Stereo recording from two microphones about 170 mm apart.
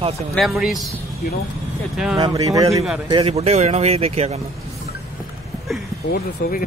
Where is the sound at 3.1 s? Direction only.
35° right (ahead or behind).